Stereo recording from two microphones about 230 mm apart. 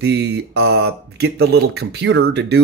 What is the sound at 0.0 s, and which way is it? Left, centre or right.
Speech, right.